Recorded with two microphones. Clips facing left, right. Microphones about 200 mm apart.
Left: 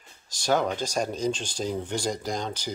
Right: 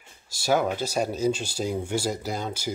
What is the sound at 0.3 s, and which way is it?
Speech, 10° right (ahead or behind).